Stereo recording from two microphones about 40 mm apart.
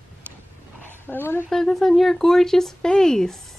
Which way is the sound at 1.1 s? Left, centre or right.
Left.